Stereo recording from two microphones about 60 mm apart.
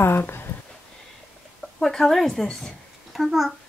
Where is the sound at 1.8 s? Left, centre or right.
Centre.